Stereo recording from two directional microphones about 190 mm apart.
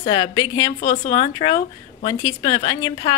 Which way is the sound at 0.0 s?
20° left (ahead or behind).